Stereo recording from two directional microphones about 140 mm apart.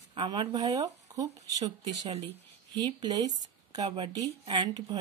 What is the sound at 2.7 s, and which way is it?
Speech, 30° right (ahead or behind).